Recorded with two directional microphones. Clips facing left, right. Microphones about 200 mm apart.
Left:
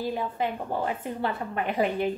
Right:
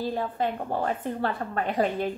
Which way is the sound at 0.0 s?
10° left (ahead or behind).